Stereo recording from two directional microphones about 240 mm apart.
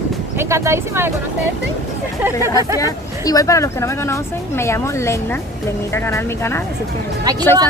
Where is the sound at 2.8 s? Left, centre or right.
Centre.